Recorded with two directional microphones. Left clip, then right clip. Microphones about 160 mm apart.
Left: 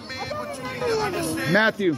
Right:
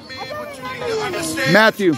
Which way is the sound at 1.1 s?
40° right (ahead or behind).